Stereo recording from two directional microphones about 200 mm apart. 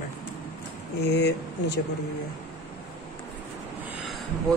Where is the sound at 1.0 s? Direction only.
55° left (ahead or behind).